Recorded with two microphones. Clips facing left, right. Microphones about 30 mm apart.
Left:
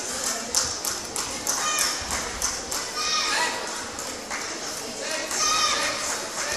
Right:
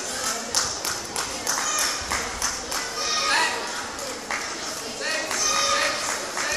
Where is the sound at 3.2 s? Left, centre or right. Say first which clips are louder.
Right 5 dB; right.